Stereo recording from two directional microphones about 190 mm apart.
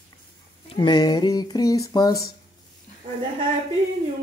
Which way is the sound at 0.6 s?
25° left (ahead or behind).